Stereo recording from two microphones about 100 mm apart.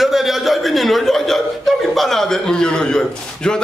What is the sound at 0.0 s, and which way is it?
A man's voice, centre (ahead or behind).